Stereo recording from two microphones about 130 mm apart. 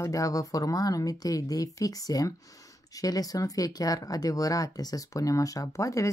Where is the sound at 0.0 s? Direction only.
25° left (ahead or behind).